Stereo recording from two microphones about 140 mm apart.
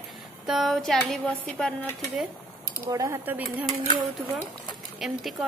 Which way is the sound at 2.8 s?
25° right (ahead or behind).